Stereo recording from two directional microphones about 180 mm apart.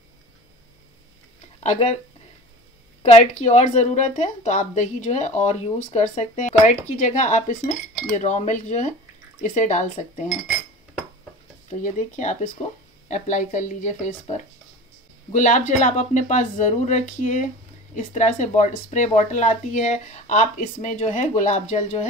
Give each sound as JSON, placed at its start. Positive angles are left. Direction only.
{"t": 1.6, "sound": "speech", "side_deg": 40}
{"t": 3.0, "sound": "a woman's voice", "side_deg": 40}
{"t": 11.8, "sound": "a woman's voice", "side_deg": 45}